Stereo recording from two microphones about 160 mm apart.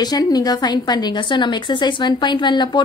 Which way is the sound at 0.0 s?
25° left (ahead or behind).